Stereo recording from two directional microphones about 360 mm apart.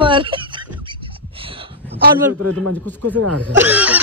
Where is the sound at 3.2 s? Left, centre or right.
Right.